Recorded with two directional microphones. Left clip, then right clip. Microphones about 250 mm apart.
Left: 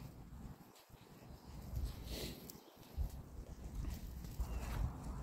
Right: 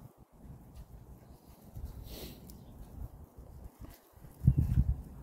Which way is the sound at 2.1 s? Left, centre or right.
Right.